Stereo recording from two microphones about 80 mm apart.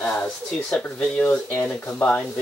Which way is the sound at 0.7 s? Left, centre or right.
Centre.